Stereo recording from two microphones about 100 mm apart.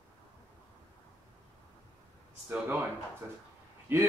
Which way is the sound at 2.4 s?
15° right (ahead or behind).